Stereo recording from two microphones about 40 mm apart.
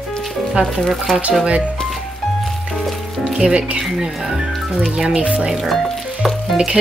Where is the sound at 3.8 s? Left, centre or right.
Centre.